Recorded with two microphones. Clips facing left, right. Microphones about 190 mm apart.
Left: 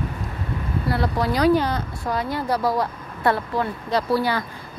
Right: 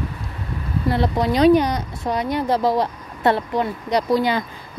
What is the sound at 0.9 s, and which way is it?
A woman's voice, 20° right (ahead or behind).